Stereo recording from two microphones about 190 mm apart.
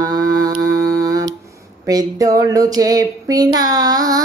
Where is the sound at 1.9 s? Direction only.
20° right (ahead or behind).